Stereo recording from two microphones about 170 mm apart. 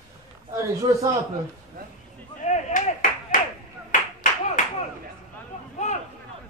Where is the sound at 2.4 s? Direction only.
40° left (ahead or behind).